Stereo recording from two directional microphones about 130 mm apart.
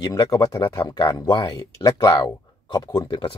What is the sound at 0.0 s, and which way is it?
Speech, 30° left (ahead or behind).